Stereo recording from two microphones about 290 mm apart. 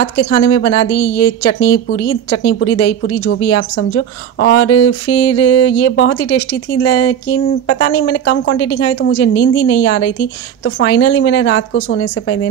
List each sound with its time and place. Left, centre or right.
0.0 s speech: left
11.7 s a woman's voice: left